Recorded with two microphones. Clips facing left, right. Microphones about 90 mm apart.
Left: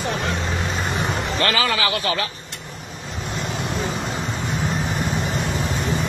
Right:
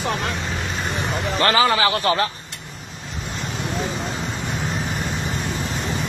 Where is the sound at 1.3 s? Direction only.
30° right (ahead or behind).